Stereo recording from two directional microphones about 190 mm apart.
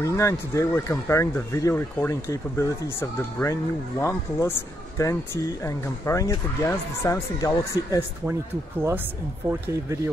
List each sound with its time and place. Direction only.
0.0 s speech: 15° left (ahead or behind)
8.3 s speech: 10° right (ahead or behind)